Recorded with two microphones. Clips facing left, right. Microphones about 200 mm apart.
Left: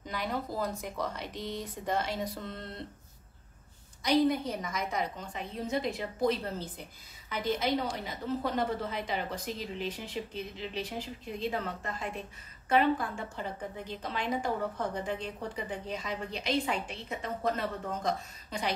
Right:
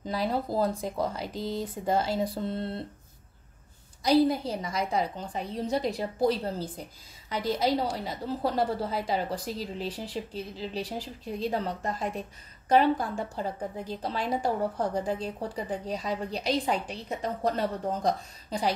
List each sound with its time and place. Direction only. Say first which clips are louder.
0.0 s a woman's voice: right 6 dB; 30° right (ahead or behind)
4.0 s a woman's voice: right 3 dB; 35° right (ahead or behind)